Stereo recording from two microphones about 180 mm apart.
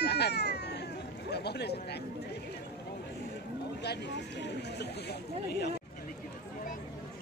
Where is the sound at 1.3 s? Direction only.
65° left (ahead or behind).